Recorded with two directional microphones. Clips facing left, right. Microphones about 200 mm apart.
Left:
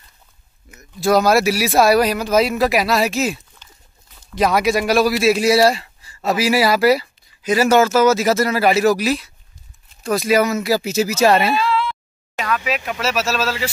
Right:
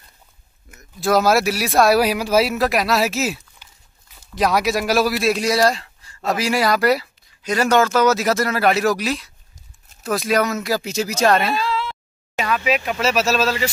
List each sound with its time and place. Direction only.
0.7 s speech: centre (ahead or behind)
11.5 s a sound: 40° right (ahead or behind)
12.4 s speech: 5° right (ahead or behind)